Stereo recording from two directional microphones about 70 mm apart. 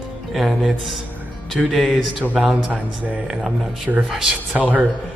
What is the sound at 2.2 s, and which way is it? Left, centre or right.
Speech, centre.